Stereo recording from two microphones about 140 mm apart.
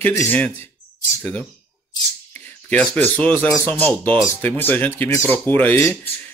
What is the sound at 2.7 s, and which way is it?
Speech, 10° left (ahead or behind).